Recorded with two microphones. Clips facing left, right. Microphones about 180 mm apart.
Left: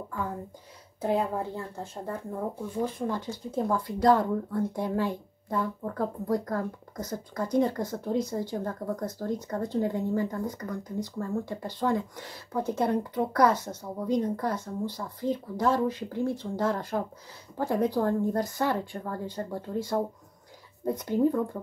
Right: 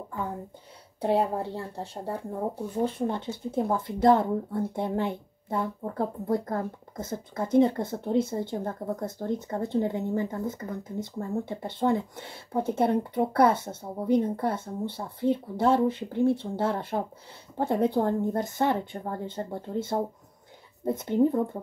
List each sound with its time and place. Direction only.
1.0 s a woman's voice: 35° right (ahead or behind)